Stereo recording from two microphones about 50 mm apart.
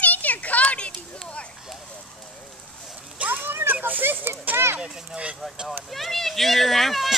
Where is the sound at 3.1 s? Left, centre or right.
Right.